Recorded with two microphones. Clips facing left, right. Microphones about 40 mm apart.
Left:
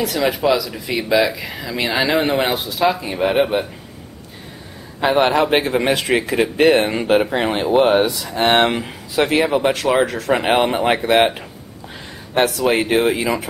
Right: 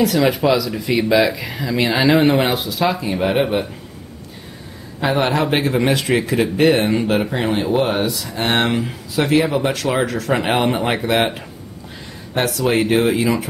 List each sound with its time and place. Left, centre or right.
0.0 s speech: centre
5.0 s speech: centre